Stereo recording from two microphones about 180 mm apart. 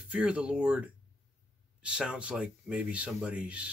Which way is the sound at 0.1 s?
5° right (ahead or behind).